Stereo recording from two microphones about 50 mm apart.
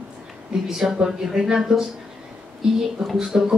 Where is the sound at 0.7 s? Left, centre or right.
Centre.